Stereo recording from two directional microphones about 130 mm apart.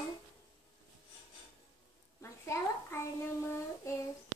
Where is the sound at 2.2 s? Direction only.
20° left (ahead or behind).